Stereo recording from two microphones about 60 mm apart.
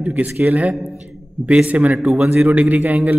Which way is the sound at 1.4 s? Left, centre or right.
Centre.